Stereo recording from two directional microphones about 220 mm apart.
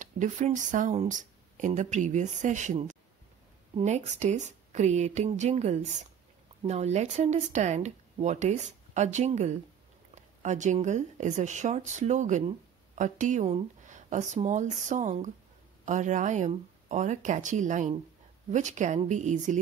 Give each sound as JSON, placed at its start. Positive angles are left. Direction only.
{"t": 0.0, "sound": "speech", "side_deg": -35}